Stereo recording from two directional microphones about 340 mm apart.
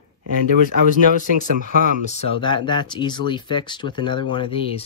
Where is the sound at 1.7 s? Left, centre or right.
Right.